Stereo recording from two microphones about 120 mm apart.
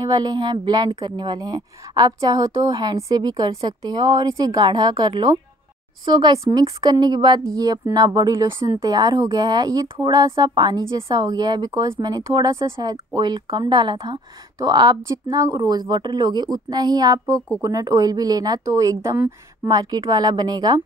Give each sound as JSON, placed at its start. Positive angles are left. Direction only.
{"t": 0.0, "sound": "a woman's voice", "side_deg": -35}
{"t": 19.7, "sound": "a woman's voice", "side_deg": -30}